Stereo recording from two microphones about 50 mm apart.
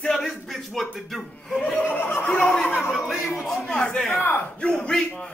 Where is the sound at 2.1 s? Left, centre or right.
Left.